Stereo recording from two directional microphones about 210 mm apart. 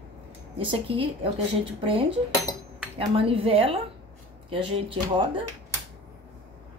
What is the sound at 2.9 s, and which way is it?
Speech, 25° right (ahead or behind).